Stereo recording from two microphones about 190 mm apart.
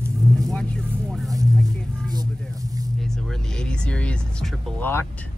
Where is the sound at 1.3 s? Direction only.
20° right (ahead or behind).